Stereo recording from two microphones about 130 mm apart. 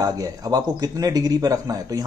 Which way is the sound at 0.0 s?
30° right (ahead or behind).